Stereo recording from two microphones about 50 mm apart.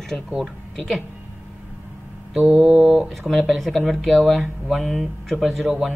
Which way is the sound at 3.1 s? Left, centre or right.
Centre.